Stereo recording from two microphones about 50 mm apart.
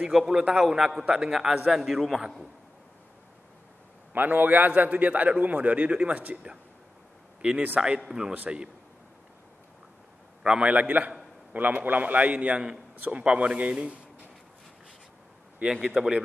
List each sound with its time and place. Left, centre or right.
0.1 s a man's voice: centre
4.1 s a man's voice: right
7.4 s a man's voice: right
10.4 s a man's voice: centre
10.7 s a man's voice: right
15.6 s a man's voice: centre